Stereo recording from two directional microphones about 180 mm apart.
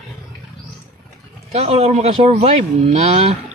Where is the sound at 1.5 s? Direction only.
35° right (ahead or behind).